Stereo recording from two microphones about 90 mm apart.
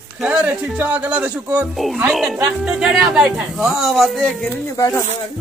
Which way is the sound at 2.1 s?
5° right (ahead or behind).